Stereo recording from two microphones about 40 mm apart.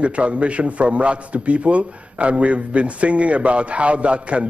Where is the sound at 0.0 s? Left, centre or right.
Right.